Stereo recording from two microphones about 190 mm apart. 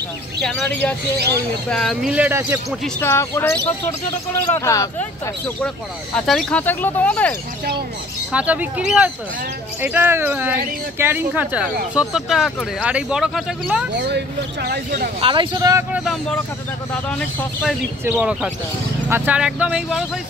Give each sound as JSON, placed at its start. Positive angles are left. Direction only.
{"t": 0.4, "sound": "speech", "side_deg": 5}
{"t": 3.0, "sound": "speech", "side_deg": 15}
{"t": 6.1, "sound": "speech", "side_deg": 5}
{"t": 8.3, "sound": "speech", "side_deg": -5}
{"t": 13.9, "sound": "speech", "side_deg": -60}
{"t": 15.1, "sound": "speech", "side_deg": -25}
{"t": 15.9, "sound": "speech", "side_deg": 0}
{"t": 18.0, "sound": "speech", "side_deg": -5}